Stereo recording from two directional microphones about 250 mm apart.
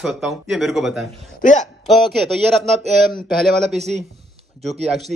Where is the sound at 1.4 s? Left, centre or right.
Left.